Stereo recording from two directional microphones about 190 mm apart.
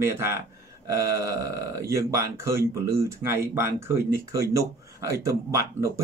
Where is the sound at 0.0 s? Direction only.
15° right (ahead or behind).